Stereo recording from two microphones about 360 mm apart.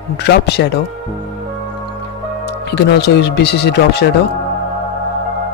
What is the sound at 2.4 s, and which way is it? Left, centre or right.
Speech, left.